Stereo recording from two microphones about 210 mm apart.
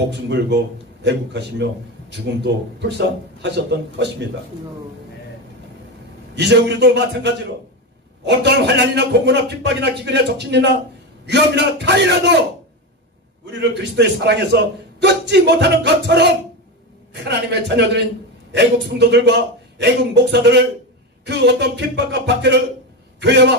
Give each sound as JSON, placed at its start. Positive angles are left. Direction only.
{"t": 0.1, "sound": "a man's voice", "side_deg": -55}
{"t": 6.3, "sound": "a man's voice", "side_deg": -55}
{"t": 13.5, "sound": "a man's voice", "side_deg": -55}